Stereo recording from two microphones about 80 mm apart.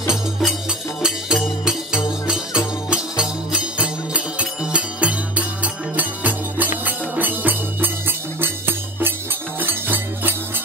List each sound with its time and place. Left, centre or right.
0.1 s music: centre; by 10.3 s right